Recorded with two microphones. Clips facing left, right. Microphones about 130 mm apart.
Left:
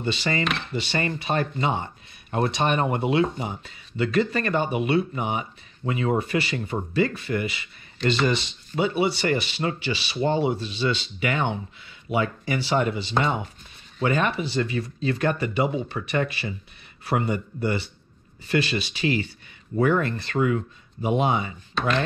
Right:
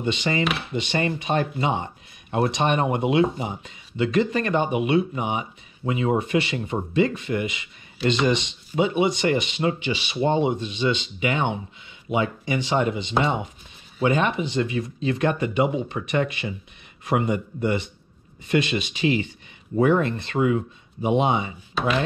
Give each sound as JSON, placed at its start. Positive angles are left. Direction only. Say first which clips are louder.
{"t": 0.0, "sound": "speech", "louder": "right 2 dB", "side_deg": -15}
{"t": 0.4, "sound": "speech", "louder": "right 2 dB", "side_deg": -5}
{"t": 13.9, "sound": "speech", "louder": "right 2 dB", "side_deg": -15}
{"t": 21.7, "sound": "chopping", "louder": "right 1 dB", "side_deg": -5}